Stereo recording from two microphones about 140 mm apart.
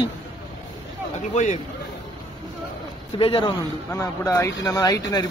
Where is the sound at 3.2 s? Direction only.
40° left (ahead or behind).